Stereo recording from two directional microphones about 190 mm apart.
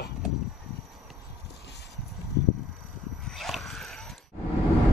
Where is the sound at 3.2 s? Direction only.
Centre (ahead or behind).